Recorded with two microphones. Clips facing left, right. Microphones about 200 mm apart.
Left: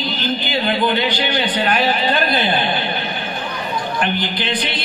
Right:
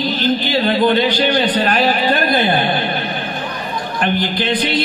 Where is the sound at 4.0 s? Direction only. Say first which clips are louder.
Right 6 dB; 40° right (ahead or behind).